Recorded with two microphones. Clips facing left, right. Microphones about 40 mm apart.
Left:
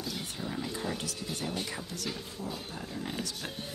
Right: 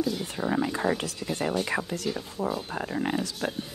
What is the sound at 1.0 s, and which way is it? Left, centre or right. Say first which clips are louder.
Speech: right 6 dB; right.